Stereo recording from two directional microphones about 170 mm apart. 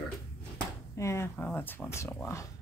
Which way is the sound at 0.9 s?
15° left (ahead or behind).